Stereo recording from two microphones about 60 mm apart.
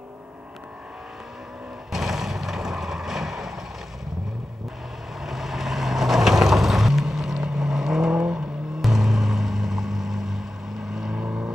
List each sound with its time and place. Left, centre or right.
1.9 s vehicle: centre
5.2 s vehicle: centre